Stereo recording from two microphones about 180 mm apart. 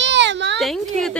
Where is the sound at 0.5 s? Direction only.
Centre (ahead or behind).